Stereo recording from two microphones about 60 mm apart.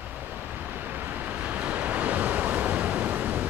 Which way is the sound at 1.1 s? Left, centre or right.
Right.